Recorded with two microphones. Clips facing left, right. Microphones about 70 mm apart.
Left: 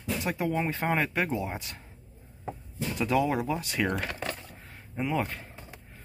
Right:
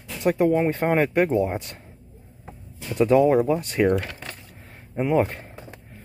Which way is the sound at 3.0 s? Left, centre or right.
Right.